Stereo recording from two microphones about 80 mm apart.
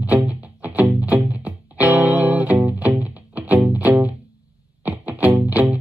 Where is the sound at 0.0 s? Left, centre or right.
Centre.